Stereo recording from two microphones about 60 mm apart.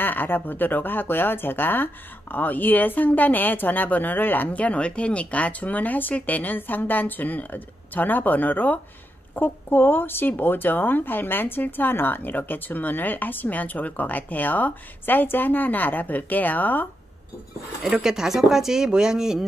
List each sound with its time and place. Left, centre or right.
0.0 s speech: left
17.8 s speech: centre